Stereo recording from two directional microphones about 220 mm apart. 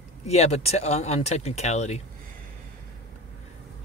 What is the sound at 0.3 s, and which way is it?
Speech, 30° left (ahead or behind).